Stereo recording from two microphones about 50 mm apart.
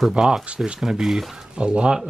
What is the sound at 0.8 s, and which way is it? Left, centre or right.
Speech, centre.